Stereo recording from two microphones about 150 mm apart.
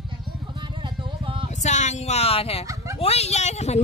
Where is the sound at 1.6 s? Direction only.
50° left (ahead or behind).